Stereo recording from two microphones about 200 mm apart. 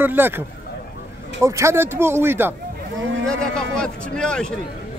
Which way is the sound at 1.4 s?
15° right (ahead or behind).